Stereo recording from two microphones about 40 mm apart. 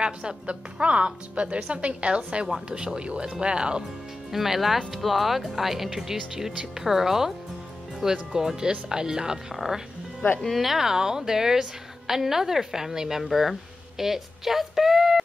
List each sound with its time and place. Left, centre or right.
0.0 s a woman's voice: right
4.3 s speech: centre
10.4 s speech: centre